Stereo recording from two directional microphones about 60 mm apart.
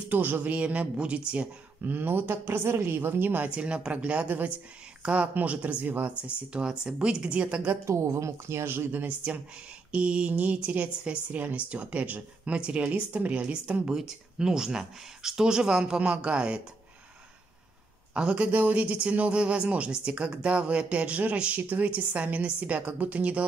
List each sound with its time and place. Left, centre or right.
0.1 s speech: right
1.8 s speech: right
3.4 s speech: centre
7.8 s speech: right; by 16.6 s centre
18.1 s speech: centre